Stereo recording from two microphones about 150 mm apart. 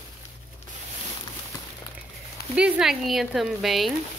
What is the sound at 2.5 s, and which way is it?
Speech, 5° right (ahead or behind).